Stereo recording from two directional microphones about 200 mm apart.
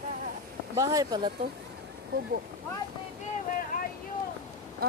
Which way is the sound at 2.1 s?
50° right (ahead or behind).